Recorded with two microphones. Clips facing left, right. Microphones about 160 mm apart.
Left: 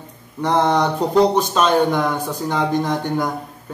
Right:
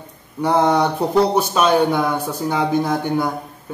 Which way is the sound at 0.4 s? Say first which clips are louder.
Right 1 dB; 10° right (ahead or behind).